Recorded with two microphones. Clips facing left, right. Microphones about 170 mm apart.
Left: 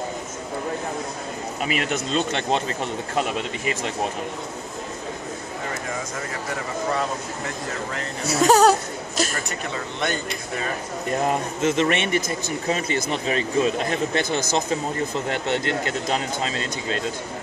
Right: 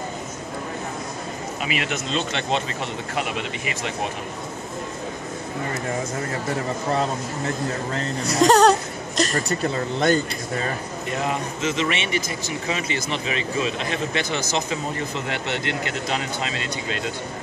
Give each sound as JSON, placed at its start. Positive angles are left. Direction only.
{"t": 1.7, "sound": "speech", "side_deg": 45}
{"t": 8.3, "sound": "a sound", "side_deg": 5}
{"t": 9.3, "sound": "speech", "side_deg": -35}
{"t": 11.1, "sound": "a man's voice", "side_deg": 50}